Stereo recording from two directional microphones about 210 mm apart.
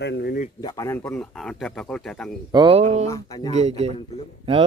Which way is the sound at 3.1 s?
15° left (ahead or behind).